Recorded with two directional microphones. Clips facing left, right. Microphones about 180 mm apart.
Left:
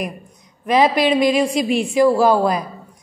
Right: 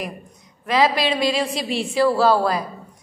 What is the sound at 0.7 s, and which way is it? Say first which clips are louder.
A woman's voice: left 4 dB; 20° left (ahead or behind).